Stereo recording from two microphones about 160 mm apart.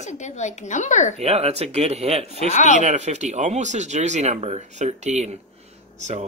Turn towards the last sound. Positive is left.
turn(degrees=-45)  # may be behind; listen again after turning